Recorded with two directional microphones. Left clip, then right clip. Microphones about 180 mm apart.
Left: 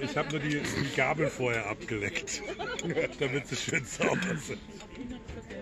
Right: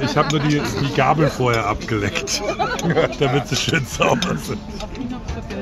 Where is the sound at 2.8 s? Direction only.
30° right (ahead or behind).